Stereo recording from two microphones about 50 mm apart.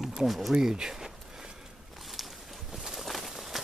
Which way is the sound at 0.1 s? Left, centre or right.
Centre.